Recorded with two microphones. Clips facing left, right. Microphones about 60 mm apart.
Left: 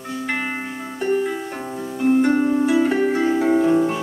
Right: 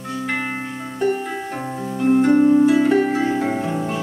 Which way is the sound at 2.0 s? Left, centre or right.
Centre.